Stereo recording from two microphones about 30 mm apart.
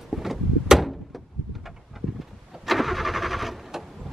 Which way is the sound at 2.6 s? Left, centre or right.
Centre.